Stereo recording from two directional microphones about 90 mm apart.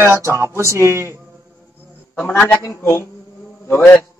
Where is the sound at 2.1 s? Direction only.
20° left (ahead or behind).